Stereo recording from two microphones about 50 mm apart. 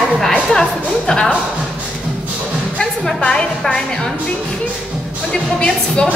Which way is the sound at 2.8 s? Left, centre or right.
Centre.